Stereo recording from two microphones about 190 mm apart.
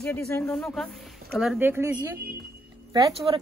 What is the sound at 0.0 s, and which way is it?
Speech, 10° left (ahead or behind).